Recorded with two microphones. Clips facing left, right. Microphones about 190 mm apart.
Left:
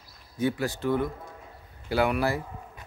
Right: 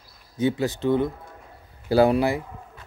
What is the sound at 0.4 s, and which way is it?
Speech, 20° right (ahead or behind).